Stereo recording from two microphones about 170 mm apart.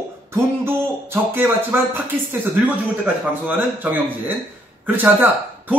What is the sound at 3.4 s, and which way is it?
A man's voice, 10° right (ahead or behind).